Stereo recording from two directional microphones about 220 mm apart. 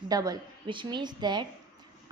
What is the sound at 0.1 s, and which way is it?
A woman's voice, 15° right (ahead or behind).